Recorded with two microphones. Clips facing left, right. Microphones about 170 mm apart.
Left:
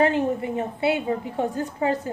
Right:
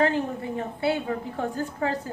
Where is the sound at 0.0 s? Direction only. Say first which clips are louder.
Left 3 dB; 20° left (ahead or behind).